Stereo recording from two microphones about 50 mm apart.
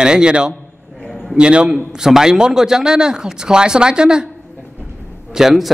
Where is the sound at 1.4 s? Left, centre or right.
Centre.